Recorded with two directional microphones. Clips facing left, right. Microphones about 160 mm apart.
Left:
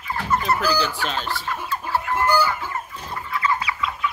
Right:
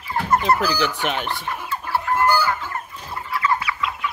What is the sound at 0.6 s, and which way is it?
Chicken, 15° right (ahead or behind).